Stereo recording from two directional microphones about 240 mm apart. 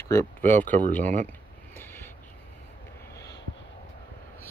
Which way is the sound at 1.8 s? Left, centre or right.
Centre.